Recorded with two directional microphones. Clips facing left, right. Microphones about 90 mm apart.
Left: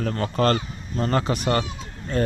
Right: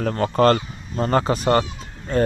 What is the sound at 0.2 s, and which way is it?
Speech, 40° right (ahead or behind).